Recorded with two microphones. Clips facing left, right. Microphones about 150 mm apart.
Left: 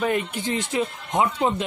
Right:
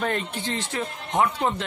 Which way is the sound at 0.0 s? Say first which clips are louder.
Left 3 dB; 10° left (ahead or behind).